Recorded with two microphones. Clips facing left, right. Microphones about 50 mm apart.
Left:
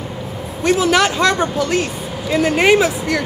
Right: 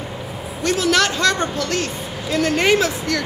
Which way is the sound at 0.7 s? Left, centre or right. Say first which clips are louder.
Left 4 dB; centre.